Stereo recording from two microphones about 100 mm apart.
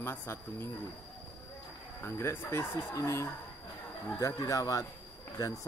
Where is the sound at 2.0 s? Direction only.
25° left (ahead or behind).